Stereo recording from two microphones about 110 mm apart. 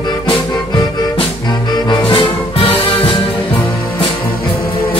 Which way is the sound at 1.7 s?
50° left (ahead or behind).